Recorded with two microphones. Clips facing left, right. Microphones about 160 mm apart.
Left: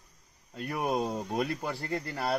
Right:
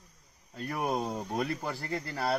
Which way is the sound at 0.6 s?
Centre (ahead or behind).